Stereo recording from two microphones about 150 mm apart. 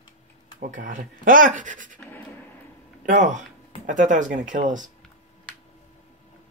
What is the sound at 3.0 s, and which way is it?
Speech, 55° right (ahead or behind).